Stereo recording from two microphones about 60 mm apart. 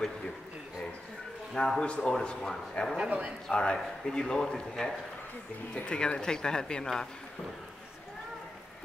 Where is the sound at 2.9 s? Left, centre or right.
Centre.